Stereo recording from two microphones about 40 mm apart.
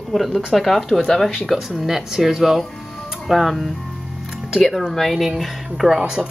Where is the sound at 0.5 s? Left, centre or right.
Centre.